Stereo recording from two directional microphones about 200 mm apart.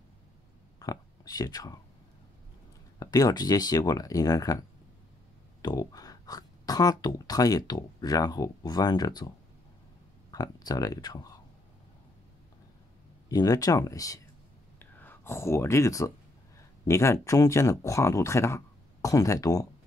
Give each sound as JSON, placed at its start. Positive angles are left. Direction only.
{"t": 0.7, "sound": "speech", "side_deg": 20}
{"t": 3.0, "sound": "speech", "side_deg": 20}
{"t": 5.6, "sound": "speech", "side_deg": 20}
{"t": 10.3, "sound": "speech", "side_deg": 20}
{"t": 13.3, "sound": "speech", "side_deg": 20}
{"t": 14.8, "sound": "a sound", "side_deg": 10}
{"t": 16.8, "sound": "speech", "side_deg": 15}